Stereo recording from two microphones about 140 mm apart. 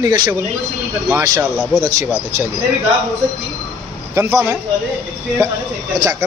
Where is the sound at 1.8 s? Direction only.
20° right (ahead or behind).